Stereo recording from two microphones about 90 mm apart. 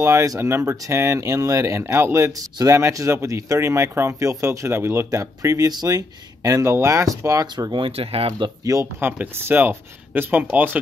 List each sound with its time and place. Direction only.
0.0 s speech: 35° right (ahead or behind)
7.5 s speech: 60° right (ahead or behind); by 8.5 s 75° right (ahead or behind)
8.7 s speech: 40° right (ahead or behind)
9.0 s speech: 25° right (ahead or behind)